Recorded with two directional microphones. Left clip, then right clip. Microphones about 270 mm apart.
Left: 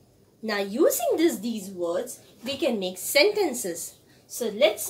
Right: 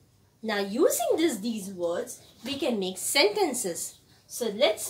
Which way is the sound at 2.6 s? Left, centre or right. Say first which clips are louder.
Left 2 dB; centre.